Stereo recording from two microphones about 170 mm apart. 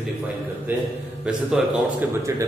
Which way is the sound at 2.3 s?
20° right (ahead or behind).